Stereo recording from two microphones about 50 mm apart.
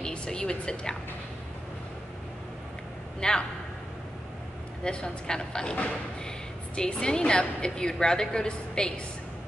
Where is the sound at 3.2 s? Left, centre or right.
Centre.